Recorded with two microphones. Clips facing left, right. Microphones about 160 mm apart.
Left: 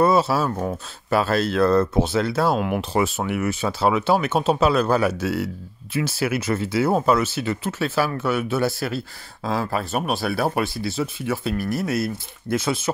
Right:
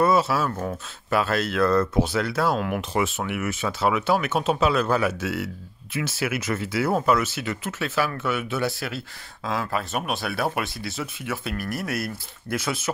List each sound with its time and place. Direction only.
0.0 s speech: 30° left (ahead or behind)
0.5 s speech: 20° left (ahead or behind)
1.1 s speech: 35° left (ahead or behind)
2.8 s speech: 35° left (ahead or behind)